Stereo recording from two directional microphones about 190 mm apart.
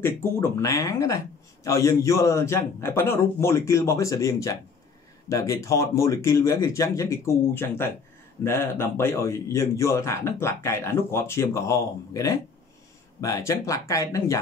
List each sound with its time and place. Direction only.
0.0 s speech: 15° left (ahead or behind)